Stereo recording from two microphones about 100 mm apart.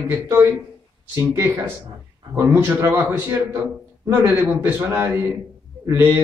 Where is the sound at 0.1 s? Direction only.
20° right (ahead or behind).